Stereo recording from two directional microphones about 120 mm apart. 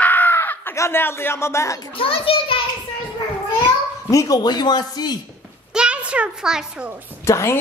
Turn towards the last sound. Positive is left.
turn(degrees=25)  # may be behind; listen again after turning